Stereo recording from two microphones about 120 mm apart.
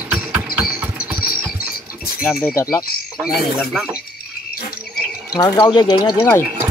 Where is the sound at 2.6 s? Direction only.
20° left (ahead or behind).